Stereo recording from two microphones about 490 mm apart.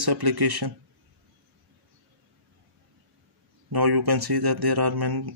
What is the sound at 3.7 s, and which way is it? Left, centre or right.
Speech, right.